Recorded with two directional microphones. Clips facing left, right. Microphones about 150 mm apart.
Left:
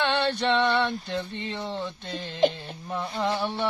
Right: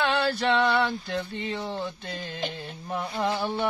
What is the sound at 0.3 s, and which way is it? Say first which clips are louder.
Speech: even; 5° right (ahead or behind).